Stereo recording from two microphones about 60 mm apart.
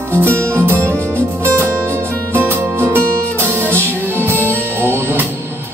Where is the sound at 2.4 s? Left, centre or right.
Right.